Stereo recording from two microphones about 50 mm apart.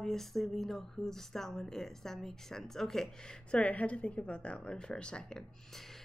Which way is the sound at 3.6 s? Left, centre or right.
Left.